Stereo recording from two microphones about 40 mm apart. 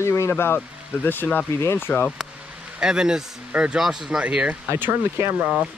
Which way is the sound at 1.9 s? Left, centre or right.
Left.